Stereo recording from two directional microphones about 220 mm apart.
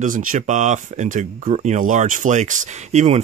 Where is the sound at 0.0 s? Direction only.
35° right (ahead or behind).